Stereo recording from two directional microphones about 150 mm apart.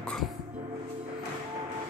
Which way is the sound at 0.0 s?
5° left (ahead or behind).